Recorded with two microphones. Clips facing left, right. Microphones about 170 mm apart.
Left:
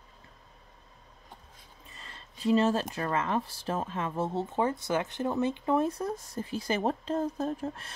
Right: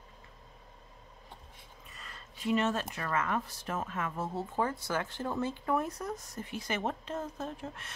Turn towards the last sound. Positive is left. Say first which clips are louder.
# left 7 dB
turn(degrees=35)  # may be behind; listen again after turning